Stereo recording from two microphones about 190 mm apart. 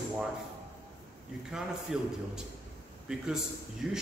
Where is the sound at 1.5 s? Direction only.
5° right (ahead or behind).